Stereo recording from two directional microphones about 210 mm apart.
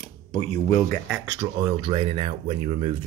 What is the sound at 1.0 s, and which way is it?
Speech, 5° right (ahead or behind).